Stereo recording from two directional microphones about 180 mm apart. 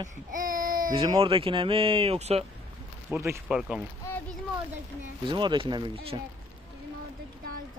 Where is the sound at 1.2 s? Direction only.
30° right (ahead or behind).